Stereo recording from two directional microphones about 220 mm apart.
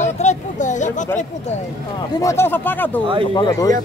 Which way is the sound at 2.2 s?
10° left (ahead or behind).